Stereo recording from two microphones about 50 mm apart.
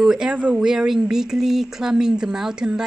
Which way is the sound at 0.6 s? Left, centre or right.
Centre.